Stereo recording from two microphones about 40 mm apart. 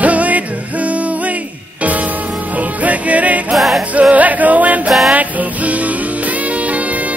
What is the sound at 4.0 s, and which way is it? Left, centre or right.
Music, right.